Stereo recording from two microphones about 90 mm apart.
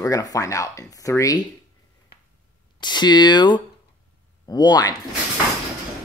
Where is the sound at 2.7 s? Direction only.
55° left (ahead or behind).